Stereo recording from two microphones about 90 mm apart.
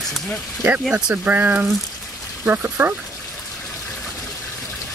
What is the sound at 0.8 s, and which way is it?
Speech, 10° right (ahead or behind).